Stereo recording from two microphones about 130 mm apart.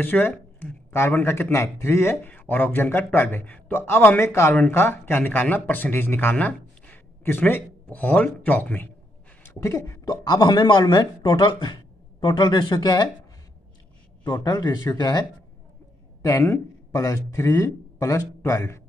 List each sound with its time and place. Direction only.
0.0 s speech: 15° left (ahead or behind)
0.3 s a sound: 5° left (ahead or behind)
0.9 s speech: 20° left (ahead or behind); by 13.1 s 35° left (ahead or behind)
14.4 s speech: 30° left (ahead or behind)